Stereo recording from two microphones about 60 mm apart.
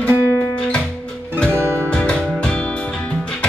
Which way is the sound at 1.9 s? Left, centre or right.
Centre.